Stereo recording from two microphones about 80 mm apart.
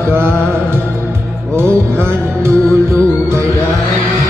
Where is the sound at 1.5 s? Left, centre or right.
Right.